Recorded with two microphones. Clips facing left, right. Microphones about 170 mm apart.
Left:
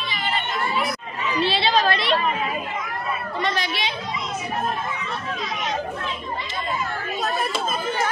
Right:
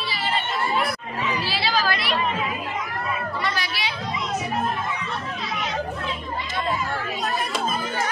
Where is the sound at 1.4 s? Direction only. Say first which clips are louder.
Left 7 dB; 25° left (ahead or behind).